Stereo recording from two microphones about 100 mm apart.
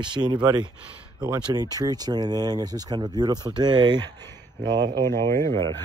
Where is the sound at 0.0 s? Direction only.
50° right (ahead or behind).